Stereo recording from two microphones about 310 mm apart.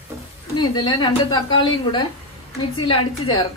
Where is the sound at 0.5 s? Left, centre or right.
Centre.